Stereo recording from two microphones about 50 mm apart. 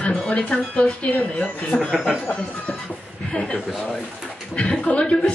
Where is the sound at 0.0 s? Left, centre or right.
Left.